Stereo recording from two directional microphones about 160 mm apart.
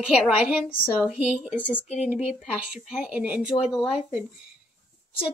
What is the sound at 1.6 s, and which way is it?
Speech, 10° left (ahead or behind).